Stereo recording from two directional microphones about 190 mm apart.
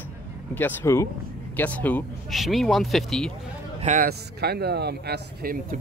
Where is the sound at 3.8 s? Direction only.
45° right (ahead or behind).